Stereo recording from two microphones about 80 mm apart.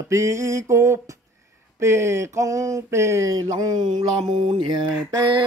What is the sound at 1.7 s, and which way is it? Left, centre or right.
Mantra, right.